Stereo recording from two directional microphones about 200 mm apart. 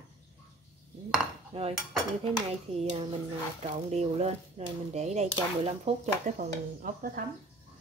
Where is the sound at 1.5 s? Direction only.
30° right (ahead or behind).